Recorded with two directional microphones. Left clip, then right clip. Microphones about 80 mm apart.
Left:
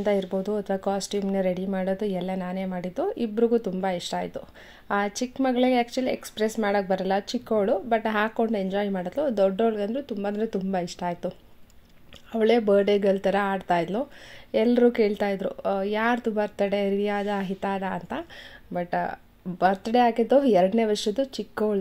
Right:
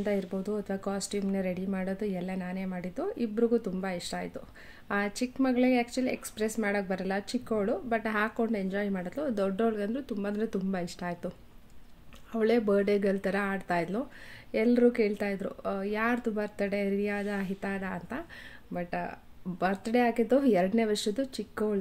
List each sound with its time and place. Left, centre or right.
0.0 s speech: left
4.8 s speech: centre
5.2 s speech: left
19.6 s speech: centre